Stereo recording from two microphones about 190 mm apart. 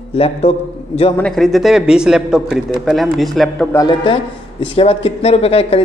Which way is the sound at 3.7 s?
20° left (ahead or behind).